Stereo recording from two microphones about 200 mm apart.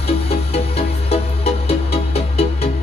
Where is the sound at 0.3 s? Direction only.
30° left (ahead or behind).